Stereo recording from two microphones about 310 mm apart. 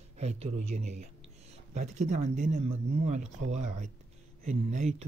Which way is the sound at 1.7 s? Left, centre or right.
Right.